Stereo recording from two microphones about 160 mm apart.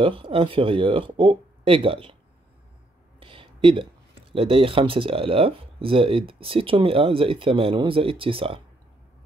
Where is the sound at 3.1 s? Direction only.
35° right (ahead or behind).